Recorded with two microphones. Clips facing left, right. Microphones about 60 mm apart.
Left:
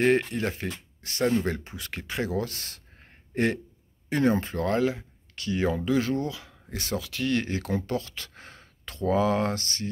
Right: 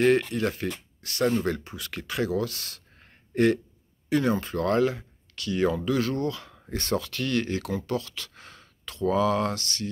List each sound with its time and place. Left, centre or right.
0.0 s speech: centre
4.6 s speech: centre
5.3 s speech: left